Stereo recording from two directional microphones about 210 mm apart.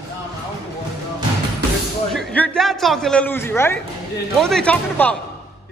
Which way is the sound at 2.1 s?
5° left (ahead or behind).